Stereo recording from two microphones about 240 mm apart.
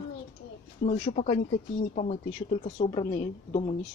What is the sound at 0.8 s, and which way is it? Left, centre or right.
Speech, left.